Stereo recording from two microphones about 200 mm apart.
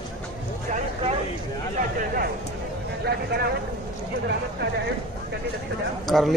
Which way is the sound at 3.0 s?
55° right (ahead or behind).